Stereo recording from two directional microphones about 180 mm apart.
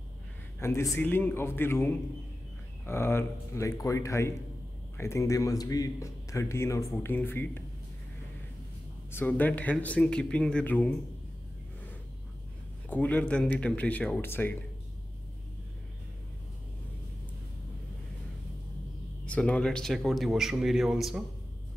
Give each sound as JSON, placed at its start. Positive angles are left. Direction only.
{"t": 0.6, "sound": "speech", "side_deg": 15}
{"t": 9.1, "sound": "speech", "side_deg": 10}
{"t": 12.9, "sound": "speech", "side_deg": 10}
{"t": 19.2, "sound": "speech", "side_deg": 5}